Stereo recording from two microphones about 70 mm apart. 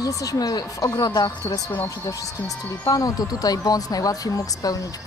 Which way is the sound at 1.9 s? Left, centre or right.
Left.